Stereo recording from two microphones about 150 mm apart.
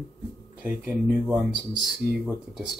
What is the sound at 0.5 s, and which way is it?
Speech, 10° right (ahead or behind).